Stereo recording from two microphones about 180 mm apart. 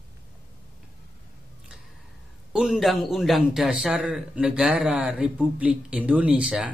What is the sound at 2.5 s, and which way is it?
A man's voice, 5° right (ahead or behind).